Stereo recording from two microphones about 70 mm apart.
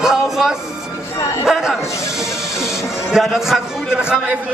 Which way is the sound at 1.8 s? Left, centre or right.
Left.